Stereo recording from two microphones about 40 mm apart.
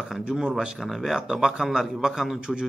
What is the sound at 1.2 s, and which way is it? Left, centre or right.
A man's voice, centre.